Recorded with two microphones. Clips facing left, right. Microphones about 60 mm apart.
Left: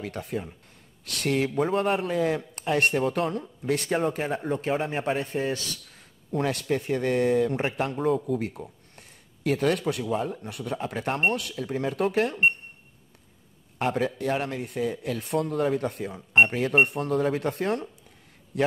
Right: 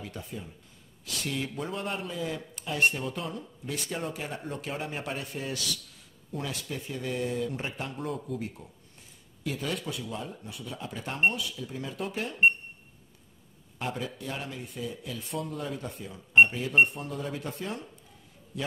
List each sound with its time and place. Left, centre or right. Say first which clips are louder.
0.0 s speech: left 8 dB; left
4.1 s speech: left 8 dB; left
6.3 s speech: left 10 dB; left
13.7 s speech: left 8 dB; left